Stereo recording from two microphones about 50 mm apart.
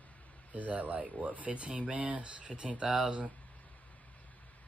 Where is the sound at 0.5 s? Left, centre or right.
Right.